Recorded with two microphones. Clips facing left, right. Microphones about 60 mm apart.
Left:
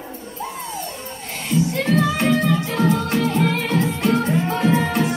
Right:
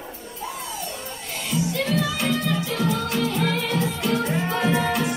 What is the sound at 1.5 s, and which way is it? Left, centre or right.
Music, left.